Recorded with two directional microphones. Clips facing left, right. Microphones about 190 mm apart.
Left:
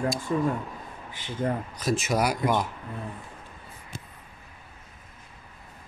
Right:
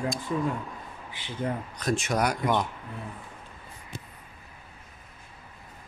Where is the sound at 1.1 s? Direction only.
45° left (ahead or behind).